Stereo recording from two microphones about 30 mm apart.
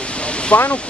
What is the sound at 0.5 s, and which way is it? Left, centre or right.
Speech, left.